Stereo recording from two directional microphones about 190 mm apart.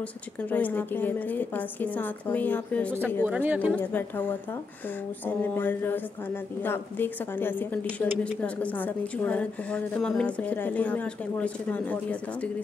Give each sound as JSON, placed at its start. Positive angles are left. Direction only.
{"t": 0.4, "sound": "a woman's voice", "side_deg": 10}
{"t": 3.3, "sound": "speech", "side_deg": -10}
{"t": 3.7, "sound": "a woman's voice", "side_deg": 10}